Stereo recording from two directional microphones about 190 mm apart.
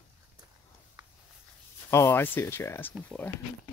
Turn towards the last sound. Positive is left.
turn(degrees=5)  # may be behind; listen again after turning